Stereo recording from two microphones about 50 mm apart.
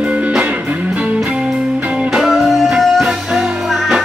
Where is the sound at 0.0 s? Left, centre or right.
Right.